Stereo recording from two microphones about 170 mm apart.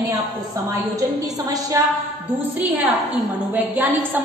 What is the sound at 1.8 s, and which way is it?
Speech, 15° right (ahead or behind).